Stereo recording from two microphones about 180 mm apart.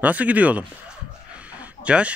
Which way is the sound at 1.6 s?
5° right (ahead or behind).